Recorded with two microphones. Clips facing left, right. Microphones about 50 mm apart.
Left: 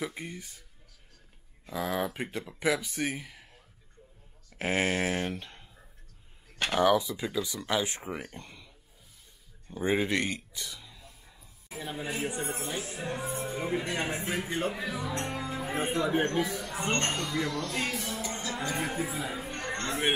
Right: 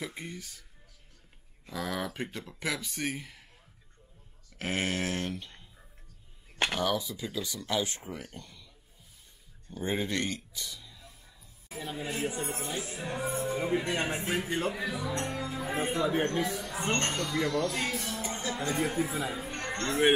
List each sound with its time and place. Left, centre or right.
0.0 s speech: centre
1.7 s speech: centre
4.6 s speech: left
6.7 s speech: centre
9.7 s a sound: centre
11.8 s speech: left
13.0 s speech: centre
14.2 s speech: centre
15.2 s music: centre
16.1 s speech: centre
18.2 s music: centre
18.8 s speech: centre